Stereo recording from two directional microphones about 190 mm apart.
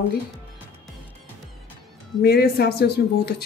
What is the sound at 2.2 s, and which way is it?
Speech, 55° left (ahead or behind).